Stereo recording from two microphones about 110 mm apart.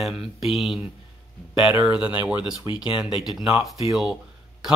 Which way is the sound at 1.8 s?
10° right (ahead or behind).